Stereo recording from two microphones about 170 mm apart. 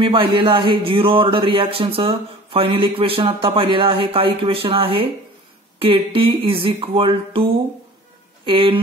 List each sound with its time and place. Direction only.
0.0 s speech: 30° right (ahead or behind)
8.5 s speech: 30° right (ahead or behind)